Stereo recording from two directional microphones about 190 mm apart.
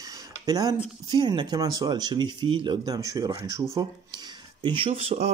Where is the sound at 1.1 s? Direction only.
20° right (ahead or behind).